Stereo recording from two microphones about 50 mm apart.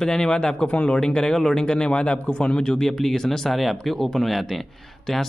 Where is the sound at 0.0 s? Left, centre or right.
Centre.